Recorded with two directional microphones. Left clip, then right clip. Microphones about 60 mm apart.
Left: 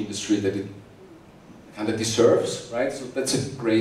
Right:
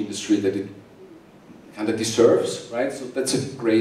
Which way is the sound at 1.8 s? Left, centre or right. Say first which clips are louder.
Right 2 dB; centre.